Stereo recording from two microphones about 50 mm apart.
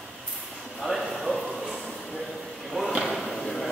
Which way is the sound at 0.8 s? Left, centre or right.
Centre.